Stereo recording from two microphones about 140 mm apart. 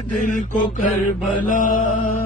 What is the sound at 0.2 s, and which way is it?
Mantra, 65° left (ahead or behind).